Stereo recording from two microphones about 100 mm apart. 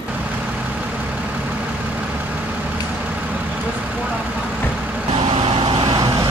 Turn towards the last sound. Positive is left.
turn(degrees=-50)  # may be behind; listen again after turning